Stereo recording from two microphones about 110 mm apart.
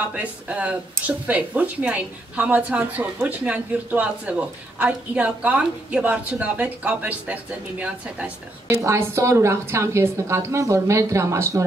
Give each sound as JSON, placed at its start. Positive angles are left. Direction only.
{"t": 0.1, "sound": "speech", "side_deg": -10}
{"t": 8.6, "sound": "a woman's voice", "side_deg": -25}